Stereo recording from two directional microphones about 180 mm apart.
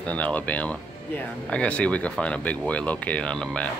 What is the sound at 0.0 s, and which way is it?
Speech, 10° left (ahead or behind).